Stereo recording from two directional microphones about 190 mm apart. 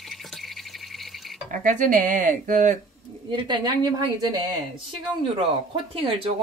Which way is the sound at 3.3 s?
25° right (ahead or behind).